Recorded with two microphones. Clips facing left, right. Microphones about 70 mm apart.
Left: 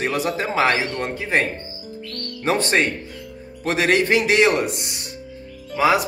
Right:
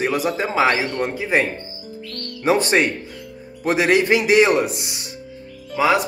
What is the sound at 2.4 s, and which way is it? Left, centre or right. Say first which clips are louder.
A man's voice: right 2 dB; centre.